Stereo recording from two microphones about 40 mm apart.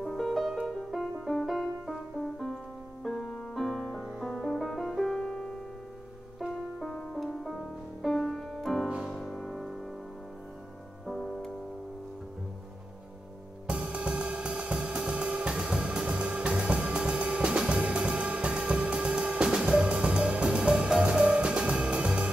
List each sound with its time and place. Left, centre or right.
0.0 s music: centre
5.1 s music: centre
6.4 s music: centre
13.7 s music: right